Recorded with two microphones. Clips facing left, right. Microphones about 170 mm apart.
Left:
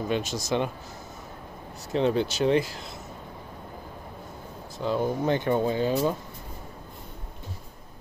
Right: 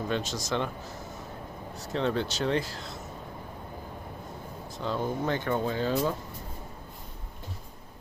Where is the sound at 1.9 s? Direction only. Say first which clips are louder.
Left 5 dB; 15° left (ahead or behind).